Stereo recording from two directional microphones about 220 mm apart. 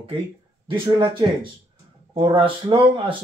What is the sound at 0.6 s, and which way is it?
Speech, 25° right (ahead or behind).